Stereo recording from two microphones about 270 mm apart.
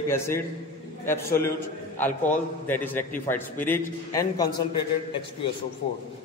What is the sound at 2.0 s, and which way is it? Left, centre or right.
A man's voice, centre.